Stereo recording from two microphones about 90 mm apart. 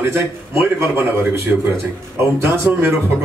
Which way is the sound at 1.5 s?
Centre (ahead or behind).